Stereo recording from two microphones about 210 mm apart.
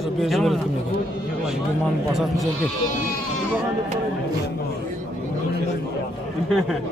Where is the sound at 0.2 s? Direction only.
Centre (ahead or behind).